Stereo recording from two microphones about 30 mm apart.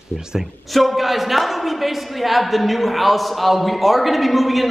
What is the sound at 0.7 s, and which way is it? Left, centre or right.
Speech, centre.